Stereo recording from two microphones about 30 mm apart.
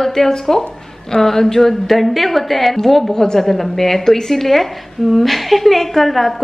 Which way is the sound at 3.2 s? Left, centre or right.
Centre.